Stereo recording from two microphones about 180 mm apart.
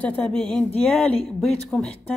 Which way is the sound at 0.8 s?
5° left (ahead or behind).